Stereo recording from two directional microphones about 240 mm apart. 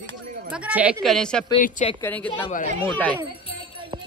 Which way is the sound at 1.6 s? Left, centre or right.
Left.